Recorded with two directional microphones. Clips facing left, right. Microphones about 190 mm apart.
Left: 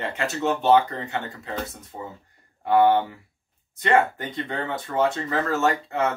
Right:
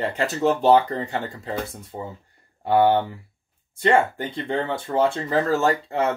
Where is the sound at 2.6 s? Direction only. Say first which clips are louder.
Even; 30° right (ahead or behind).